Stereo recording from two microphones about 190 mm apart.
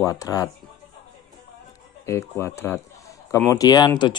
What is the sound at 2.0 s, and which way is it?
A man's voice, 15° left (ahead or behind).